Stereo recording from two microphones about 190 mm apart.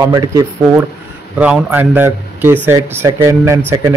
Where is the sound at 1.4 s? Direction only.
10° right (ahead or behind).